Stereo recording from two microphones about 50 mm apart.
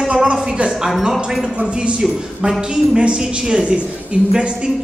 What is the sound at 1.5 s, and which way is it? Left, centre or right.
A woman's voice, right.